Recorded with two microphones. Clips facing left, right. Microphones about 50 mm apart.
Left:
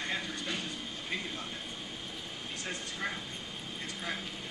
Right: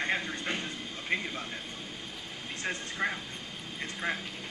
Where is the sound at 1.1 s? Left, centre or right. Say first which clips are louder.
Right 6 dB; right.